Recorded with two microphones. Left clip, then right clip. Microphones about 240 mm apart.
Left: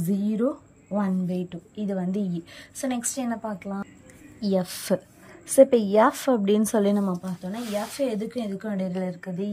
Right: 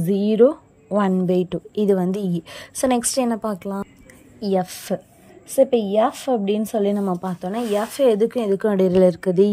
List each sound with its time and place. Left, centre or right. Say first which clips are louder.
0.1 s speech: right 11 dB; centre; by 3.9 s right
4.4 s speech: right 5 dB; centre
5.6 s a woman's voice: even; centre
7.2 s speech: right 10 dB; centre